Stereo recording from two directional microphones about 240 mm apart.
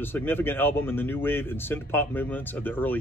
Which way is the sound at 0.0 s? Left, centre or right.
Centre.